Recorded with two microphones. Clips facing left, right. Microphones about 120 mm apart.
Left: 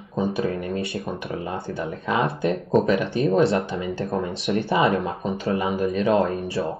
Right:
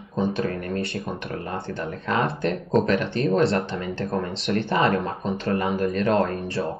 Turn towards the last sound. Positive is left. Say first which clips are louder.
# left 2 dB
turn(degrees=5)  # may be behind; listen again after turning